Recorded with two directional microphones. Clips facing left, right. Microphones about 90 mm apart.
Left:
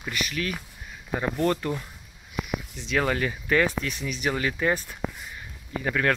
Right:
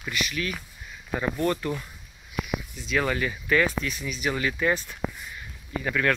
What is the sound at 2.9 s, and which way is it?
Speech, 40° left (ahead or behind).